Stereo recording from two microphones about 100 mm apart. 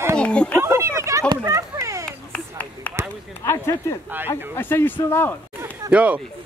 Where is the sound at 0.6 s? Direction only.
25° right (ahead or behind).